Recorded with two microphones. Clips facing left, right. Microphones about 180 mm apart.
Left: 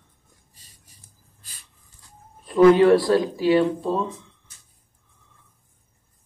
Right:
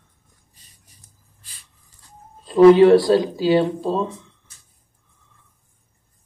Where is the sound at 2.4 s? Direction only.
25° right (ahead or behind).